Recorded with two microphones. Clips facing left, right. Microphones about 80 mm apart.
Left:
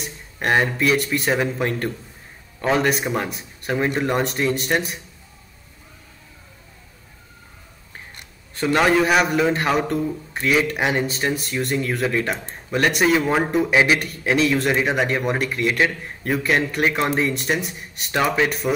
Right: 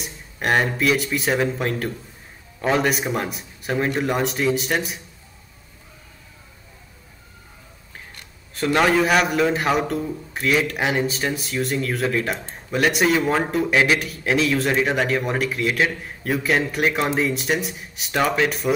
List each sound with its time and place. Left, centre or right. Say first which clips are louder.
0.0 s a man's voice: left 1 dB; centre
8.5 s a man's voice: left 1 dB; centre